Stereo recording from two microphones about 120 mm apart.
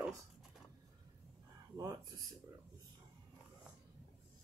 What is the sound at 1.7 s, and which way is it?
Speech, 30° right (ahead or behind).